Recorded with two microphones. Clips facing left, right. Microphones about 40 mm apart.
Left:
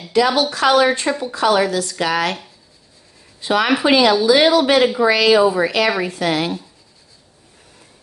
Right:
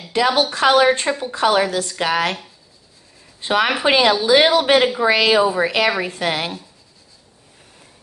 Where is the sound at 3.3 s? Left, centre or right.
Right.